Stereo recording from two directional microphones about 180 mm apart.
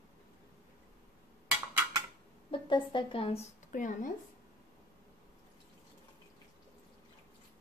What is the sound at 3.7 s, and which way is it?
Speech, 45° left (ahead or behind).